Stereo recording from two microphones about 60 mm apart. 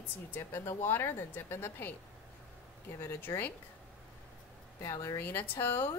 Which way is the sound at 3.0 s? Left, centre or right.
Left.